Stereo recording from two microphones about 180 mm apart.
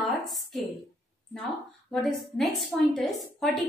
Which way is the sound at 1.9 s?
Centre (ahead or behind).